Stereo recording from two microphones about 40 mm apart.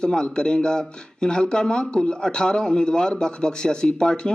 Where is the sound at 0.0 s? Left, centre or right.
Centre.